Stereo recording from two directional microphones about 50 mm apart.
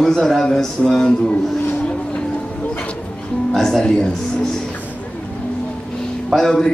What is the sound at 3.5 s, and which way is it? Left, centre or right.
Speech, centre.